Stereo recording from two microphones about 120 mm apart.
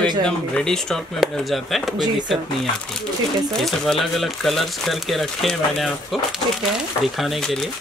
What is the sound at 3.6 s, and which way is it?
Speech, centre (ahead or behind).